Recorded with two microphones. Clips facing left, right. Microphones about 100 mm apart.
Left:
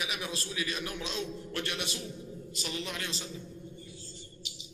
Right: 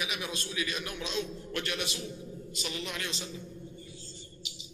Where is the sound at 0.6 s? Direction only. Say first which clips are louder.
Right 1 dB; 30° left (ahead or behind).